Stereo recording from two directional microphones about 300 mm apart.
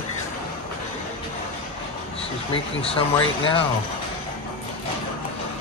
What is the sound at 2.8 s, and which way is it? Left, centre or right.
Speech, centre.